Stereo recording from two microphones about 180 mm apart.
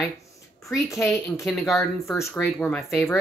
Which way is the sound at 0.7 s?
15° left (ahead or behind).